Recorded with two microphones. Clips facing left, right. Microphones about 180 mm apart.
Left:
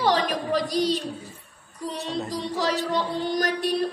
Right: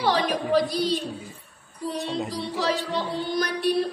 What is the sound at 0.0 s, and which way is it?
Speech, 45° left (ahead or behind).